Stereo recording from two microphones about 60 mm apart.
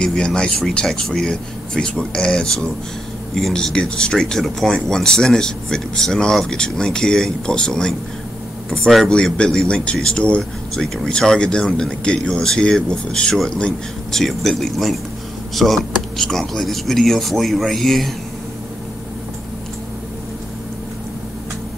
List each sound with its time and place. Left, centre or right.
0.0 s a man's voice: centre